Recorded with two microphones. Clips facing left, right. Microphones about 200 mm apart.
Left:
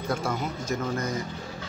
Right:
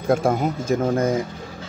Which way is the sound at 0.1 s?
50° right (ahead or behind).